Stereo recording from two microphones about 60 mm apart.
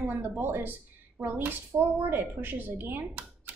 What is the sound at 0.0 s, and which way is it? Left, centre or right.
Speech, right.